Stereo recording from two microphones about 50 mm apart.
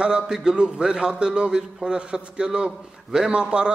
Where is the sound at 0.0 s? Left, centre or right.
Centre.